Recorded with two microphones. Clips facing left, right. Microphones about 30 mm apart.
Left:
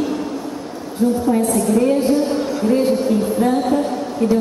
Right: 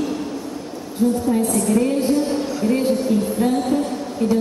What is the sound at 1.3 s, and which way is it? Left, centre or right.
Speech, centre.